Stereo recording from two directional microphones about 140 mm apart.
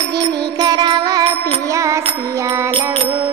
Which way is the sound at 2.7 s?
40° right (ahead or behind).